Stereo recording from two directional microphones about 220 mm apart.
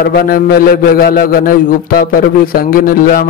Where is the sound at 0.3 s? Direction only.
45° left (ahead or behind).